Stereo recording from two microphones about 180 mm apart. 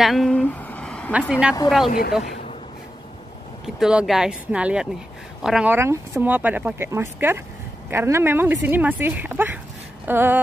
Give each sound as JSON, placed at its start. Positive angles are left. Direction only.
{"t": 0.0, "sound": "a sound", "side_deg": 0}
{"t": 1.3, "sound": "speech", "side_deg": -5}
{"t": 1.9, "sound": "speech", "side_deg": 55}
{"t": 3.6, "sound": "speech", "side_deg": -5}